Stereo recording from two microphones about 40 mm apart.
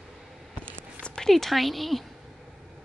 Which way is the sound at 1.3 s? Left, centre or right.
Centre.